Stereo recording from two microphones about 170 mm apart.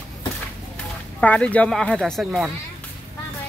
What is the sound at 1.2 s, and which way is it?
Speech, 10° left (ahead or behind).